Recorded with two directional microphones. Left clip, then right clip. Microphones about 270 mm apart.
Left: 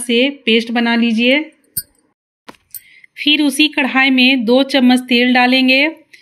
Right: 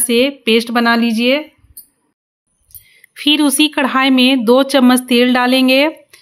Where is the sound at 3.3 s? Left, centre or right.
Right.